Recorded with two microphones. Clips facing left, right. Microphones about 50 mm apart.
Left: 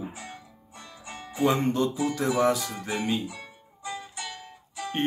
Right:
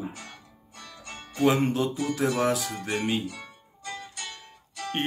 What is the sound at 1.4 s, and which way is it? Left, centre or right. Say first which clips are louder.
Music: right 1 dB; centre.